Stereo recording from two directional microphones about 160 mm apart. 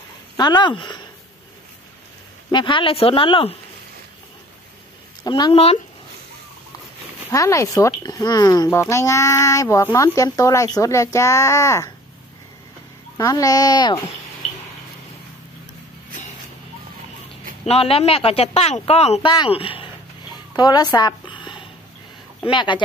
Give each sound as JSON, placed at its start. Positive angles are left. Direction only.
{"t": 0.4, "sound": "speech", "side_deg": 25}
{"t": 2.5, "sound": "speech", "side_deg": 30}
{"t": 5.2, "sound": "speech", "side_deg": 25}
{"t": 5.5, "sound": "speech", "side_deg": 40}
{"t": 7.2, "sound": "speech", "side_deg": 20}
{"t": 13.2, "sound": "speech", "side_deg": 20}
{"t": 17.6, "sound": "speech", "side_deg": 40}
{"t": 19.3, "sound": "a woman's voice", "side_deg": 30}